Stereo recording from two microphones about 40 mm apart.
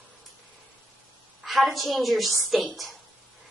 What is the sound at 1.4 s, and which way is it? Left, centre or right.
A woman's voice, centre.